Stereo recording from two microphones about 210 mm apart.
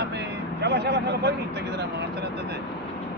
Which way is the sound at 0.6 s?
50° right (ahead or behind).